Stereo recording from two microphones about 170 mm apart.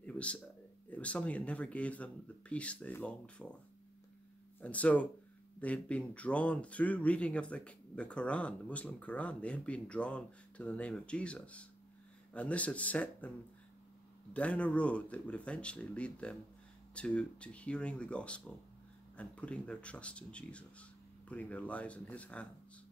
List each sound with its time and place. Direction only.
0.0 s a sound: 5° left (ahead or behind)
0.8 s speech: 10° left (ahead or behind)
4.6 s speech: 10° left (ahead or behind)
14.3 s speech: 5° left (ahead or behind)